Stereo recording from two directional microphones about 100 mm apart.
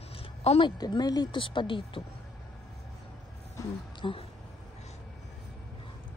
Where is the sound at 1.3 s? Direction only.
55° left (ahead or behind).